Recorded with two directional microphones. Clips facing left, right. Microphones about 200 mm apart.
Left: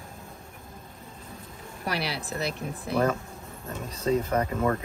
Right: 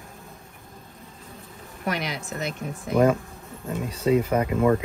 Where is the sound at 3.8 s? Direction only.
10° right (ahead or behind).